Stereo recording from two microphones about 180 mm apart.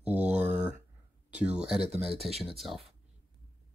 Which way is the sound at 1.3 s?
5° right (ahead or behind).